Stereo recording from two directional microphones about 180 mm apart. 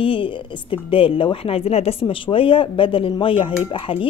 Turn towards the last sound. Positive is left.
turn(degrees=30)  # may be behind; listen again after turning